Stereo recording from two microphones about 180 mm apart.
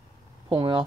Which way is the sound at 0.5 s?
25° right (ahead or behind).